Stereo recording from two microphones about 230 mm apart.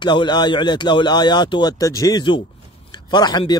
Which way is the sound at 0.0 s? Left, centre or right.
Centre.